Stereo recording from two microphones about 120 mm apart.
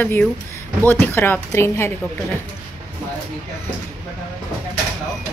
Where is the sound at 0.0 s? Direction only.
15° left (ahead or behind).